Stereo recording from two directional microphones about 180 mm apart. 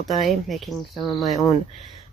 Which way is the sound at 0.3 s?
Centre (ahead or behind).